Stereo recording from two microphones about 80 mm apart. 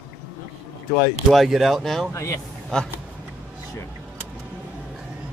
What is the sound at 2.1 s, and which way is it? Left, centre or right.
Speech, left.